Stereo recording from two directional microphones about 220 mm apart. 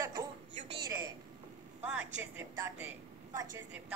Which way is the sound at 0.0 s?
15° right (ahead or behind).